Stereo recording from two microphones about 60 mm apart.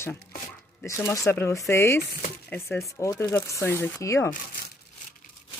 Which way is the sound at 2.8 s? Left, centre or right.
Left.